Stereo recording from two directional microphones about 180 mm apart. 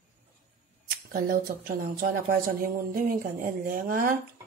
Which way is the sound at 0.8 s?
50° right (ahead or behind).